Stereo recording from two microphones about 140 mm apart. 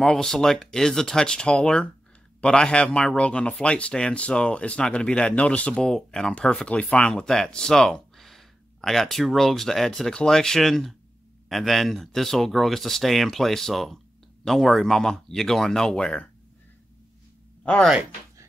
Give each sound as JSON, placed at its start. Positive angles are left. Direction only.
{"t": 0.0, "sound": "speech", "side_deg": 5}
{"t": 17.6, "sound": "speech", "side_deg": 5}